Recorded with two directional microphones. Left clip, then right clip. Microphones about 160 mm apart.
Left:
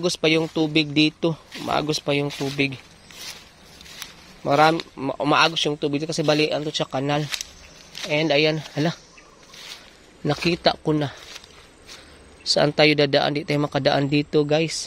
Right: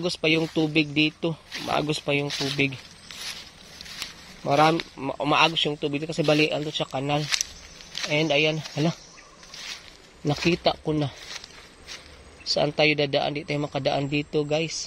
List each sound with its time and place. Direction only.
0.0 s a man's voice: 40° left (ahead or behind)
2.2 s speech: 15° left (ahead or behind)
2.6 s a sound: 35° left (ahead or behind)
4.5 s a man's voice: 30° left (ahead or behind)
10.2 s a man's voice: 40° left (ahead or behind)
12.4 s speech: 45° left (ahead or behind)